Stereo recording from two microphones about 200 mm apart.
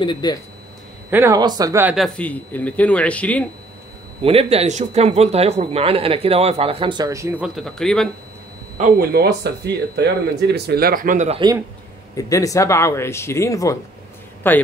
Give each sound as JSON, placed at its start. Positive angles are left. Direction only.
{"t": 0.0, "sound": "speech", "side_deg": 20}
{"t": 1.1, "sound": "speech", "side_deg": -15}
{"t": 2.0, "sound": "speech", "side_deg": 5}
{"t": 4.2, "sound": "speech", "side_deg": -30}
{"t": 8.7, "sound": "speech", "side_deg": -45}
{"t": 12.2, "sound": "speech", "side_deg": 15}